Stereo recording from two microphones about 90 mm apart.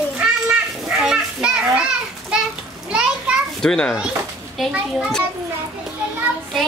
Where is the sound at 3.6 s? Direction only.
5° left (ahead or behind).